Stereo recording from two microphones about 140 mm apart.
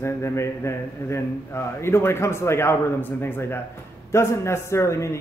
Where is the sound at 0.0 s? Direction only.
20° left (ahead or behind).